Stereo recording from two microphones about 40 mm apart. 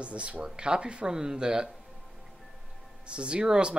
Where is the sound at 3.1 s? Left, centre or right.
Right.